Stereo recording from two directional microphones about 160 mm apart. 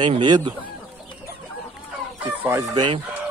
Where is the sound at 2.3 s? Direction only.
20° right (ahead or behind).